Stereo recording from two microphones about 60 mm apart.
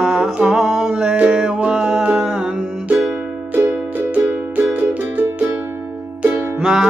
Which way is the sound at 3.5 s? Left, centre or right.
Right.